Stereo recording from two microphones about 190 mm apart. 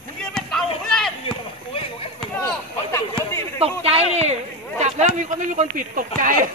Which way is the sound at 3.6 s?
30° right (ahead or behind).